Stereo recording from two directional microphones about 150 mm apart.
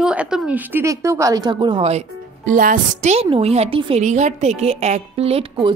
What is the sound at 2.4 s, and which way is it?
A woman's voice, 65° right (ahead or behind).